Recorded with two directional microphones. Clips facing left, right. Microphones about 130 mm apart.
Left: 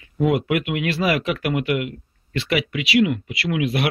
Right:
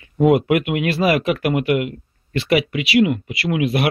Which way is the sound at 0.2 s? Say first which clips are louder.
Right 5 dB; 40° right (ahead or behind).